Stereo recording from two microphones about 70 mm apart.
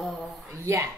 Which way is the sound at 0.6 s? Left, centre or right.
Right.